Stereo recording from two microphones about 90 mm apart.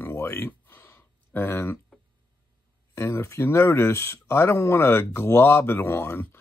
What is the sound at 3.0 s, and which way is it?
Speech, 30° left (ahead or behind).